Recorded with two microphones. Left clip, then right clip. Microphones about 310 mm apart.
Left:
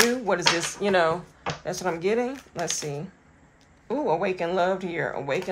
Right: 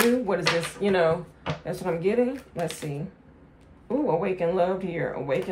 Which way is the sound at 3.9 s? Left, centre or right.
Centre.